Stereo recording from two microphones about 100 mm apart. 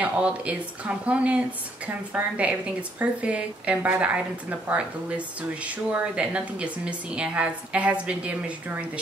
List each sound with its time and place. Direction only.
0.0 s a woman's voice: 15° right (ahead or behind)